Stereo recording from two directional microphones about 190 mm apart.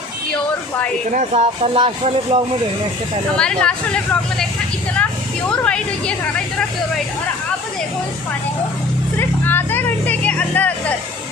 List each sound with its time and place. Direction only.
1.1 s speech: 35° right (ahead or behind)
3.3 s speech: 5° left (ahead or behind)
5.5 s speech: 5° left (ahead or behind)
9.2 s vehicle: 10° left (ahead or behind)